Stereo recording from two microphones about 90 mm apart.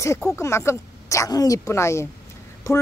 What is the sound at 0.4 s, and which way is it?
Speech, 30° left (ahead or behind).